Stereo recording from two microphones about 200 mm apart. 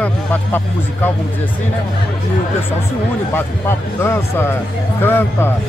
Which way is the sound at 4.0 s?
10° left (ahead or behind).